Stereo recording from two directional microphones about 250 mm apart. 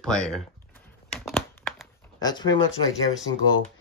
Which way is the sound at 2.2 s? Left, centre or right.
Centre.